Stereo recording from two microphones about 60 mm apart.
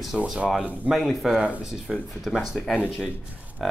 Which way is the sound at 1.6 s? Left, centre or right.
Centre.